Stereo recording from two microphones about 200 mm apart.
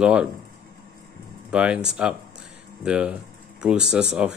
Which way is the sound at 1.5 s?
5° right (ahead or behind).